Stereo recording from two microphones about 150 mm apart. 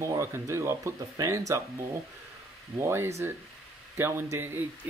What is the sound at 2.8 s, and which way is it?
Speech, 15° right (ahead or behind).